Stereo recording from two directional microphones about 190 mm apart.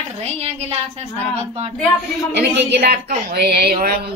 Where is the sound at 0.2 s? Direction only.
35° right (ahead or behind).